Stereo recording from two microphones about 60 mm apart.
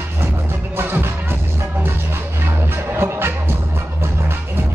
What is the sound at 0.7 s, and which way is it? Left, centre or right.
Music, right.